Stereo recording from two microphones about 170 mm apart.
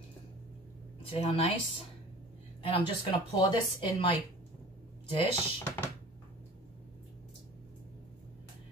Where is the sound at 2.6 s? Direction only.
30° left (ahead or behind).